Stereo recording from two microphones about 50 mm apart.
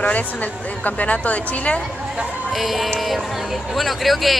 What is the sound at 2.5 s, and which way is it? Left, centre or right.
Speech, centre.